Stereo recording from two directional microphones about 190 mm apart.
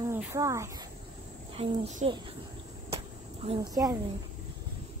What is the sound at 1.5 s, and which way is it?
Speech, 30° right (ahead or behind).